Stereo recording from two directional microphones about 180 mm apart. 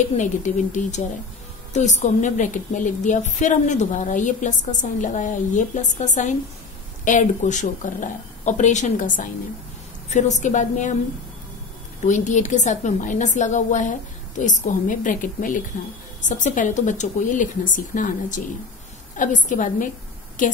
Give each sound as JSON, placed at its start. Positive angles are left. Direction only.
{"t": 0.2, "sound": "a woman's voice", "side_deg": 45}
{"t": 12.0, "sound": "a woman's voice", "side_deg": 40}